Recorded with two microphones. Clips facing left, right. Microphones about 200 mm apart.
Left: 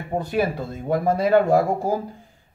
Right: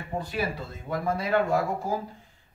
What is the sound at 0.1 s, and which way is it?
Speech, 50° left (ahead or behind).